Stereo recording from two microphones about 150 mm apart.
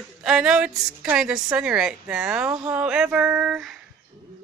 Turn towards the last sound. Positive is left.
turn(degrees=-5)  # may be behind; listen again after turning